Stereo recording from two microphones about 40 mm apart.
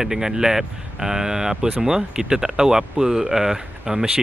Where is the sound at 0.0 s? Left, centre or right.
Centre.